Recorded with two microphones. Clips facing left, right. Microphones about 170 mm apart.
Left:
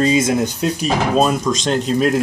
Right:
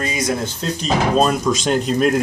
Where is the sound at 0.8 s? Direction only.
5° left (ahead or behind).